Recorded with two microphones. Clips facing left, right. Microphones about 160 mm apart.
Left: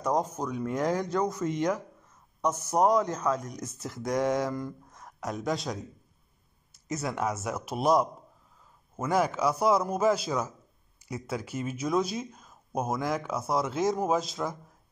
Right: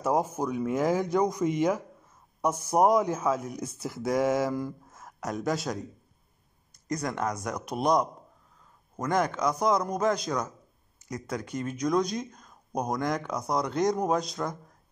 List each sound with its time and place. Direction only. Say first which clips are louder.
0.0 s a man's voice: right 2 dB; 10° right (ahead or behind)